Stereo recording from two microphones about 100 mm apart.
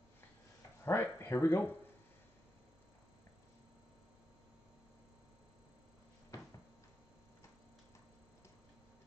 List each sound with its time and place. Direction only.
0.8 s speech: 20° left (ahead or behind)
6.3 s cupboard open or close: 35° left (ahead or behind)